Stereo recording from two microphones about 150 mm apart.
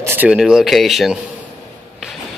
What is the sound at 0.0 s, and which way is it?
Speech, 15° right (ahead or behind).